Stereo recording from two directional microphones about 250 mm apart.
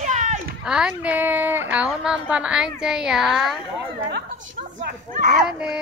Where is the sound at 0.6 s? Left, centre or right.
Centre.